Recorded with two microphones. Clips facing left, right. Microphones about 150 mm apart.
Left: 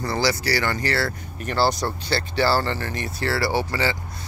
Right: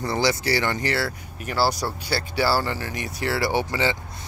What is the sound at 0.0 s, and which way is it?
Speech, 20° right (ahead or behind).